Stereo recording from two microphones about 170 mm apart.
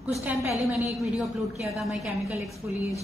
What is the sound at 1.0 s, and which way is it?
A woman's voice, centre (ahead or behind).